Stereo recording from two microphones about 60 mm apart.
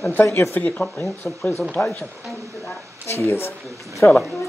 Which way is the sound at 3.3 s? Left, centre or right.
Left.